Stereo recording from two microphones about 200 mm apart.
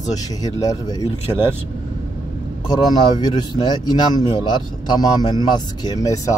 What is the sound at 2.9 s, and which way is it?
A man's voice, 20° left (ahead or behind).